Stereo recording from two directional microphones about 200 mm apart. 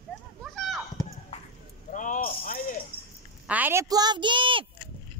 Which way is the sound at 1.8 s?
40° left (ahead or behind).